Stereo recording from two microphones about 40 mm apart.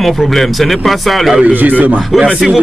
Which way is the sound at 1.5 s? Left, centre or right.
Right.